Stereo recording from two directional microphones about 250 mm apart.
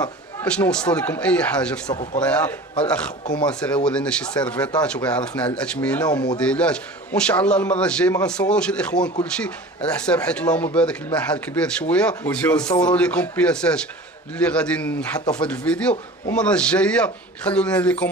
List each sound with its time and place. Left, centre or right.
0.0 s speech: centre
6.0 s speech: centre
6.3 s speech: centre